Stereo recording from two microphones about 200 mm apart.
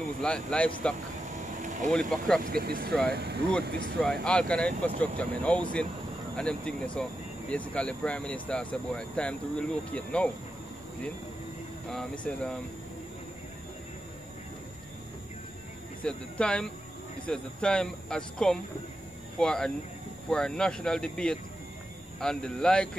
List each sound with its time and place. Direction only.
0.2 s speech: 5° left (ahead or behind)
1.3 s vehicle: 40° right (ahead or behind)
1.9 s speech: 5° left (ahead or behind)
2.4 s speech: 50° right (ahead or behind)
4.0 s speech: 5° left (ahead or behind)
11.9 s speech: 5° left (ahead or behind)
16.0 s speech: 5° left (ahead or behind)